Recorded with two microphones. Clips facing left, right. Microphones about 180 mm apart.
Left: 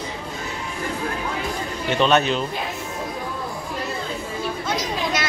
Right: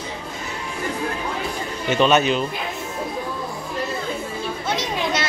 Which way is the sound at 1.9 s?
5° right (ahead or behind).